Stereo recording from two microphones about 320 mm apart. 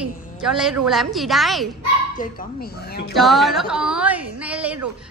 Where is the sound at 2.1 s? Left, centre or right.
Left.